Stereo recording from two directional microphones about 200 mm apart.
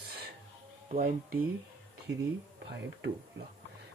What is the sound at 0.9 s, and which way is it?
Speech, 45° right (ahead or behind).